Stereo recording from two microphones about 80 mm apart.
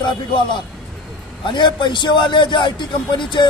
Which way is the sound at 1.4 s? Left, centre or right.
Left.